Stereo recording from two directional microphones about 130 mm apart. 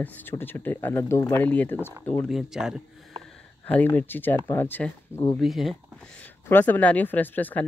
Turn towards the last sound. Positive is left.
turn(degrees=15)  # may be behind; listen again after turning